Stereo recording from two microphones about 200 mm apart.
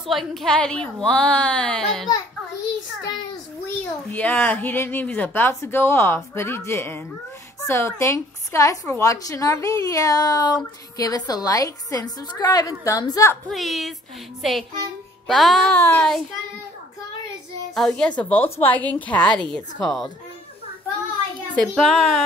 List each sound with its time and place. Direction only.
0.0 s a woman's voice: centre (ahead or behind)
4.1 s a woman's voice: 10° left (ahead or behind)
13.5 s a woman's voice: centre (ahead or behind)
17.7 s a woman's voice: 5° left (ahead or behind)
21.5 s a woman's voice: centre (ahead or behind)